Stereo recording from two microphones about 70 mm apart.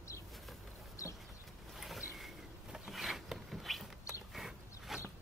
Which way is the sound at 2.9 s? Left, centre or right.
Centre.